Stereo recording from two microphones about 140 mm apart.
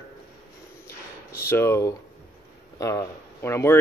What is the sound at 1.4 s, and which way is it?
Speech, 20° left (ahead or behind).